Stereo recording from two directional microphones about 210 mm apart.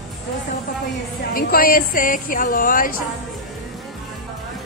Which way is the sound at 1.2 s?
45° left (ahead or behind).